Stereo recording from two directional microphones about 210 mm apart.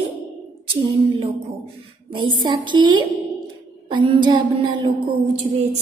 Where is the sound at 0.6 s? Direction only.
25° right (ahead or behind).